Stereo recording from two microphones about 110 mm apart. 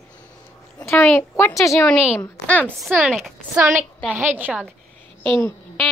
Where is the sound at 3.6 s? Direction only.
20° right (ahead or behind).